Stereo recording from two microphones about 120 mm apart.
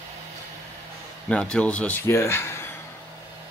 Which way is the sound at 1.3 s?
10° left (ahead or behind).